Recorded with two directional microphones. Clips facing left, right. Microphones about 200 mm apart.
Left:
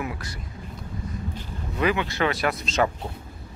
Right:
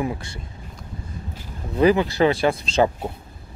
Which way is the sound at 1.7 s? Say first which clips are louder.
Right 7 dB; 35° right (ahead or behind).